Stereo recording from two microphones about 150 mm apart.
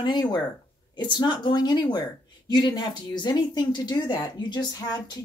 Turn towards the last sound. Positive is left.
turn(degrees=30)  # may be behind; listen again after turning